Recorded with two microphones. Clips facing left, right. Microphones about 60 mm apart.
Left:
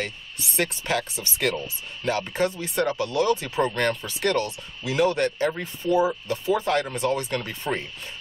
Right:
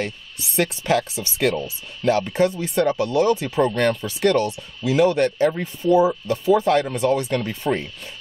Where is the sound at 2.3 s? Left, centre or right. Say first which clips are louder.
Right 5 dB; centre.